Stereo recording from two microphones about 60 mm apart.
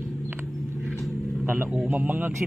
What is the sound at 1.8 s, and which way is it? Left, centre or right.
Speech, right.